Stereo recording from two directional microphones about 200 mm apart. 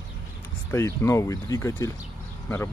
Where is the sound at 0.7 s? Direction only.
15° left (ahead or behind).